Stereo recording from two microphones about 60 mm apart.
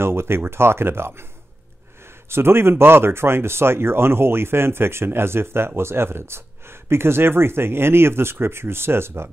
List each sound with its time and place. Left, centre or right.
0.0 s speech: right
2.2 s speech: right